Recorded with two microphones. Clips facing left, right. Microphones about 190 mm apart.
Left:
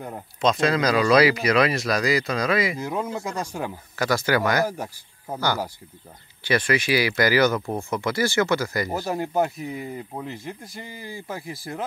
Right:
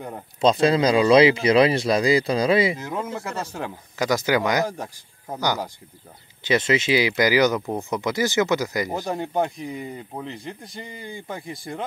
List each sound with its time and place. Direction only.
0.4 s speech: 30° right (ahead or behind)
2.8 s speech: 15° left (ahead or behind)
3.9 s speech: 15° right (ahead or behind)
4.6 s speech: 10° left (ahead or behind)
6.4 s speech: 20° right (ahead or behind)
8.9 s speech: 5° left (ahead or behind)